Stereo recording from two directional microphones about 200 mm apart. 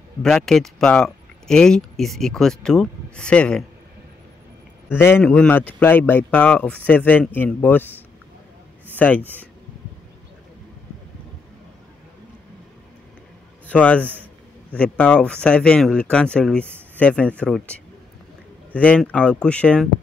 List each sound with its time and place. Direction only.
0.2 s speech: 5° left (ahead or behind)
4.8 s speech: 10° left (ahead or behind)
8.9 s speech: 10° left (ahead or behind)
13.7 s speech: 5° left (ahead or behind)